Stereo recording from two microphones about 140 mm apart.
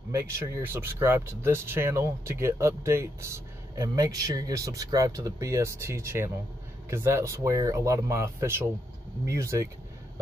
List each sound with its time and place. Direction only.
0.1 s speech: 20° right (ahead or behind)